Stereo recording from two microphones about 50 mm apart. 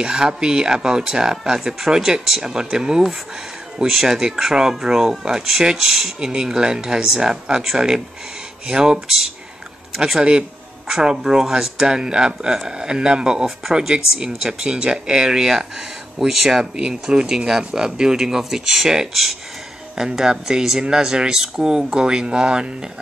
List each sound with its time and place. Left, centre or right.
0.0 s speech: centre